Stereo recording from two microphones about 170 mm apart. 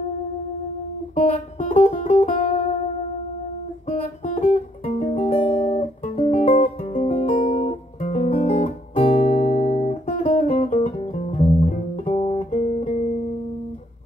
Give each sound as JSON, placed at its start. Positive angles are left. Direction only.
{"t": 1.1, "sound": "music", "side_deg": 50}
{"t": 4.2, "sound": "music", "side_deg": 50}
{"t": 9.1, "sound": "guitar", "side_deg": 50}